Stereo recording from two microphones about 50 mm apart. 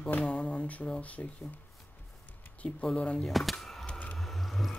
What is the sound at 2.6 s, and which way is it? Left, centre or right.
Speech, left.